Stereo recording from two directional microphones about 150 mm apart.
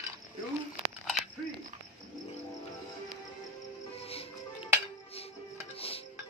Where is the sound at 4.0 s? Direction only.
40° left (ahead or behind).